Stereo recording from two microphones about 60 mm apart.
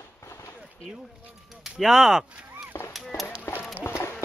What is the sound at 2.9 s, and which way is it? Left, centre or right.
Honk, centre.